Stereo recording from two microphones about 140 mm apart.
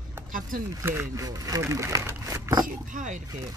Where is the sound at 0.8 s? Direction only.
20° right (ahead or behind).